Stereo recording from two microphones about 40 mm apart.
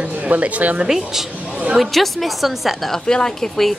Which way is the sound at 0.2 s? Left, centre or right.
Right.